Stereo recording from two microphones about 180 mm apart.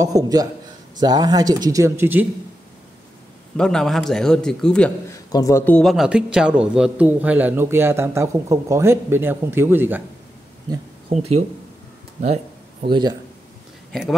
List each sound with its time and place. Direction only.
0.0 s speech: 20° right (ahead or behind)
3.5 s a man's voice: 5° left (ahead or behind)
5.1 s a man's voice: 15° left (ahead or behind); by 10.0 s 10° right (ahead or behind)
11.1 s speech: 35° right (ahead or behind)
12.8 s speech: 25° right (ahead or behind)